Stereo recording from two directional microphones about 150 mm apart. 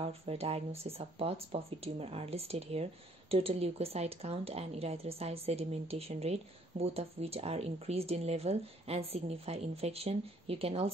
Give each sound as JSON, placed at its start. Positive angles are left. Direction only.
{"t": 0.0, "sound": "speech", "side_deg": -40}